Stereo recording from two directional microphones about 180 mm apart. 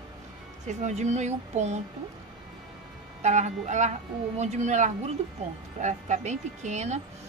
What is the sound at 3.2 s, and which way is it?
Speech, 40° right (ahead or behind).